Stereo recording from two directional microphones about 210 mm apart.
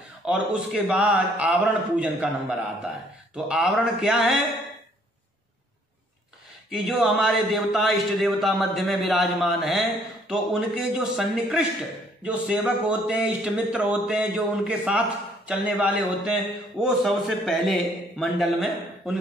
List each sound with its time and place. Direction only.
0.2 s speech: 5° right (ahead or behind)
3.4 s speech: 5° right (ahead or behind)
6.7 s speech: centre (ahead or behind)